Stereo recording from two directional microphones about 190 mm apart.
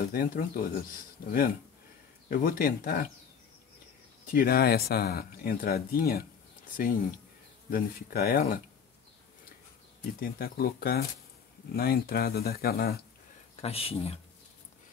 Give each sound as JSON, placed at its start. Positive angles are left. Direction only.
{"t": 0.1, "sound": "speech", "side_deg": 50}
{"t": 4.3, "sound": "speech", "side_deg": 50}
{"t": 7.7, "sound": "speech", "side_deg": 55}
{"t": 10.2, "sound": "speech", "side_deg": 55}
{"t": 13.6, "sound": "speech", "side_deg": 30}